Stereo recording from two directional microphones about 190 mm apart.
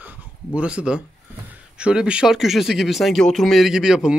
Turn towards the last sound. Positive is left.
turn(degrees=-5)  # may be behind; listen again after turning